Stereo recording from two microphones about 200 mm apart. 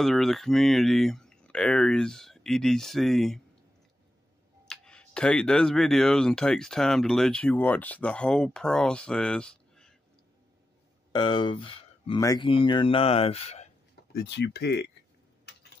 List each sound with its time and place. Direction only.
0.0 s speech: centre (ahead or behind)
4.6 s speech: 5° left (ahead or behind)
11.1 s speech: 25° left (ahead or behind)
14.1 s speech: 55° left (ahead or behind)